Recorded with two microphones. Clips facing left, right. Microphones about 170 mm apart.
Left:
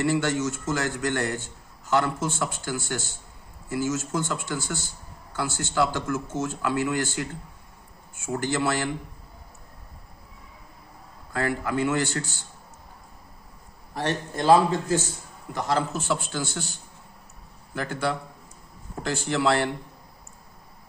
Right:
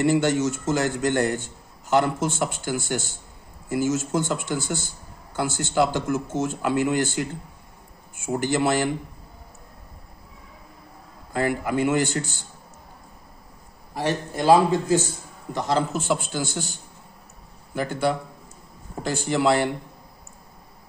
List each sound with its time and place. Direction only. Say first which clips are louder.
0.0 s speech: right 4 dB; 20° right (ahead or behind)
8.3 s speech: right 4 dB; 20° right (ahead or behind)
11.3 s a man's voice: right 3 dB; 15° right (ahead or behind)
13.9 s a man's voice: right 2 dB; 10° right (ahead or behind)
19.0 s a man's voice: right 3 dB; 15° right (ahead or behind)